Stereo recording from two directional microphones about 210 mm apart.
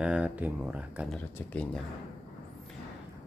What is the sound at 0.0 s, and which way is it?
Speech, 5° right (ahead or behind).